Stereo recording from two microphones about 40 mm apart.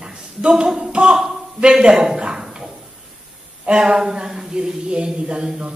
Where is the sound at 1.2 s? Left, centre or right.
Centre.